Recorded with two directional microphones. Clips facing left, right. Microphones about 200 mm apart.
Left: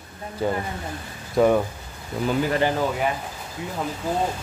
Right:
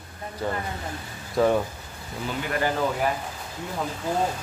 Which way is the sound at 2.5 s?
20° left (ahead or behind).